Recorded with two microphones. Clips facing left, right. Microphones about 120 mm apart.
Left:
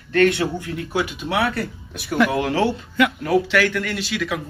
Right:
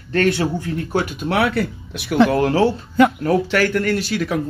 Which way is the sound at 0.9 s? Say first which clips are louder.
Right 2 dB; 55° right (ahead or behind).